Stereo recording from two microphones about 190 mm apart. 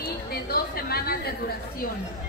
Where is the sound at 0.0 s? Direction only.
55° left (ahead or behind).